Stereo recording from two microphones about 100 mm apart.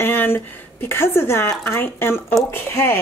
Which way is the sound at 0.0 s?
20° left (ahead or behind).